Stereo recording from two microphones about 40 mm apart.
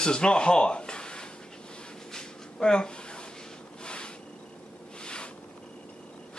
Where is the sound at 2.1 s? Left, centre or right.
Centre.